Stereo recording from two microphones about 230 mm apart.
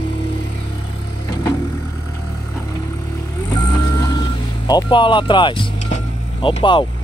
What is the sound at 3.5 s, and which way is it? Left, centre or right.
Vehicle, centre.